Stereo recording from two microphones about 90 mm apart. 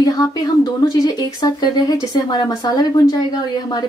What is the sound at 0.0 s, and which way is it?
Speech, 45° left (ahead or behind).